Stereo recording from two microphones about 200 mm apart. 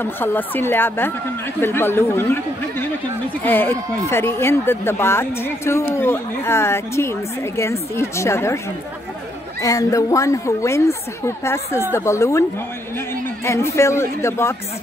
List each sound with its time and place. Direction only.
0.0 s speech: 10° left (ahead or behind)
3.4 s speech: 10° left (ahead or behind)
9.6 s speech: 15° left (ahead or behind)
13.5 s speech: 15° left (ahead or behind)